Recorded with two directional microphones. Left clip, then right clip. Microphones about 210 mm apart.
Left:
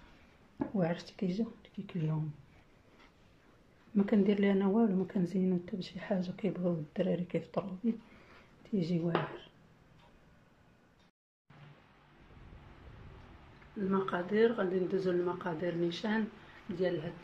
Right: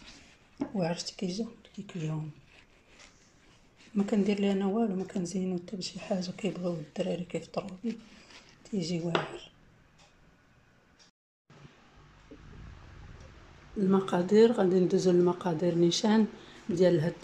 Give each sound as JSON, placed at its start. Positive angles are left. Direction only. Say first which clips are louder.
{"t": 0.6, "sound": "speech", "louder": "right 2 dB", "side_deg": -5}
{"t": 3.9, "sound": "speech", "louder": "right 1 dB", "side_deg": -5}
{"t": 13.7, "sound": "speech", "louder": "right 5 dB", "side_deg": -20}